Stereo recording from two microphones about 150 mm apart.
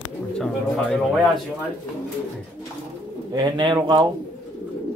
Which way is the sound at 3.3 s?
30° right (ahead or behind).